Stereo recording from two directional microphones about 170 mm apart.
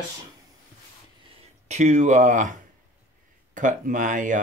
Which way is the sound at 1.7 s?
45° right (ahead or behind).